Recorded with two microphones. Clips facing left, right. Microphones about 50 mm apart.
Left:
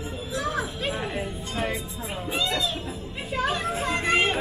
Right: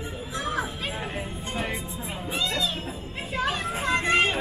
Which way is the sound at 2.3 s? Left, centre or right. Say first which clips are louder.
Left 2 dB; left.